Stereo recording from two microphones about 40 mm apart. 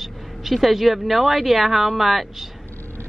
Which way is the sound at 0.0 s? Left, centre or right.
Centre.